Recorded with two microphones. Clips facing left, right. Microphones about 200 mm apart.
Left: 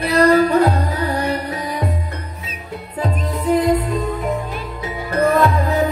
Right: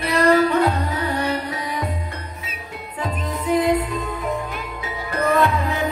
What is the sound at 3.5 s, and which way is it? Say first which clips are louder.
Music: left 3 dB; 40° left (ahead or behind).